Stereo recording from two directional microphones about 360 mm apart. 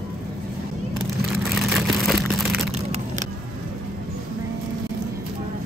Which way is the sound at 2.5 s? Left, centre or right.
Centre.